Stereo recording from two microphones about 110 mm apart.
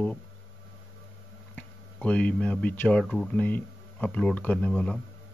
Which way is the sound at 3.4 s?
15° left (ahead or behind).